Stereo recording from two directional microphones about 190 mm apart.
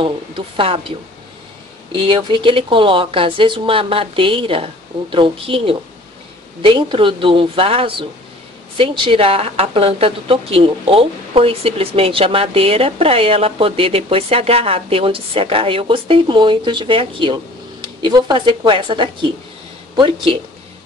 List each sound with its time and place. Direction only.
0.6 s a woman's voice: 30° right (ahead or behind)
2.0 s a woman's voice: 25° right (ahead or behind)